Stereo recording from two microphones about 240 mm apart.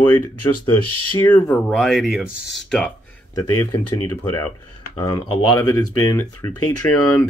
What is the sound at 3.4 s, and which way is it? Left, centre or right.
Speech, centre.